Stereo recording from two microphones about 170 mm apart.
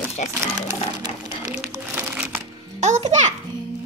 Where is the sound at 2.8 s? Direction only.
45° right (ahead or behind).